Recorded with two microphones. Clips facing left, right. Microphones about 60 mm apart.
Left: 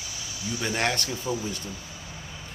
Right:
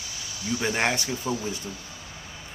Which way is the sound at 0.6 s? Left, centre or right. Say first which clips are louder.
Right 1 dB; centre.